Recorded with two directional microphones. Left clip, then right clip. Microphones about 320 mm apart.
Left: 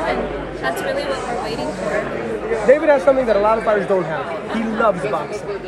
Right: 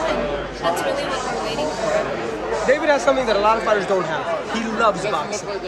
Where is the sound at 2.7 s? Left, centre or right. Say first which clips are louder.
Left 4 dB; centre.